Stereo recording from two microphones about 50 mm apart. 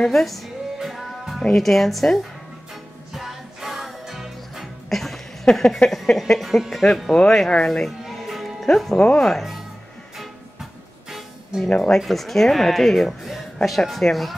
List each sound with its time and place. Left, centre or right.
0.0 s speech: centre
0.7 s music: centre
1.6 s speech: centre
2.7 s music: centre
5.9 s speech: centre
6.4 s speech: centre
7.1 s speech: centre
8.0 s music: centre
8.9 s speech: centre
9.4 s speech: centre
11.1 s music: centre
12.0 s speech: centre